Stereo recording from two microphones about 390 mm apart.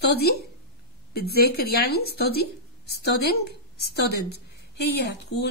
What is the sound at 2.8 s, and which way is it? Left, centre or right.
Speech, left.